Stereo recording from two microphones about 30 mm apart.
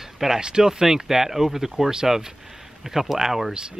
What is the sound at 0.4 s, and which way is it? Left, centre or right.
Speech, right.